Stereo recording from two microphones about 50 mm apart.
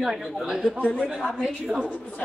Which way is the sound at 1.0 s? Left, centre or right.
Right.